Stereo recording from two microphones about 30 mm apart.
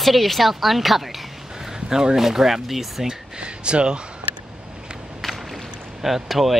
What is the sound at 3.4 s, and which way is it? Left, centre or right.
Speech, right.